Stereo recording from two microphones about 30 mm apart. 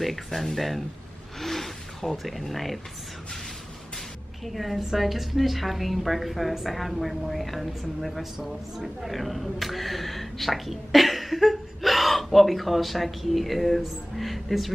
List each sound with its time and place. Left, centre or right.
0.0 s a woman's voice: centre
1.4 s snake: centre
2.2 s a woman's voice: centre
4.5 s a woman's voice: centre
8.8 s a woman's voice: centre